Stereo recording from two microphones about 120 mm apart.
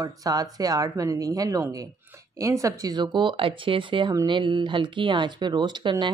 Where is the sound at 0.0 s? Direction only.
30° right (ahead or behind).